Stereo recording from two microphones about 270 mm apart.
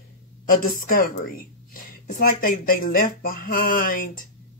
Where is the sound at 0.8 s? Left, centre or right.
Left.